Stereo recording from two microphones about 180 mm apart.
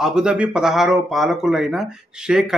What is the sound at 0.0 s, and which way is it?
Speech, 5° right (ahead or behind).